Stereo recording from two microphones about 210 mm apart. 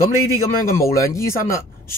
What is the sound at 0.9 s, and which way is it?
Speech, 15° left (ahead or behind).